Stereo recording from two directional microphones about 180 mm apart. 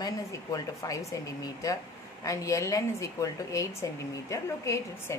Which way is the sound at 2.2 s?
15° left (ahead or behind).